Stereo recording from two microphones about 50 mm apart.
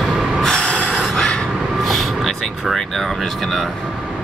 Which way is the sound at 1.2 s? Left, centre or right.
Centre.